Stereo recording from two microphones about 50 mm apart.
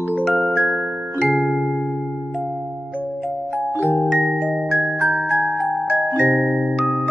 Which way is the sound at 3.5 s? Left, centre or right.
Right.